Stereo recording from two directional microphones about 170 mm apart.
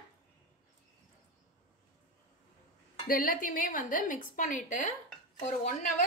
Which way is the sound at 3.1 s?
55° left (ahead or behind).